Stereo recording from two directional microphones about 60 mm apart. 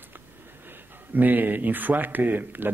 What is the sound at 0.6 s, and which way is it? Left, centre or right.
Speech, right.